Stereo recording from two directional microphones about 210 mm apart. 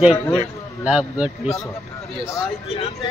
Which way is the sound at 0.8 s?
5° right (ahead or behind).